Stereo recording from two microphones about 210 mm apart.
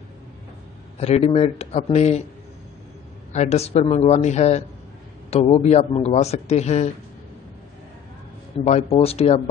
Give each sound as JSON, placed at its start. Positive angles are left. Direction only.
{"t": 0.9, "sound": "a man's voice", "side_deg": 30}
{"t": 3.3, "sound": "a man's voice", "side_deg": 30}
{"t": 8.5, "sound": "speech", "side_deg": 30}